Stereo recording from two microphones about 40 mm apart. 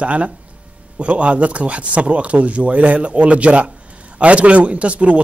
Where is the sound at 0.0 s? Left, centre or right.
Right.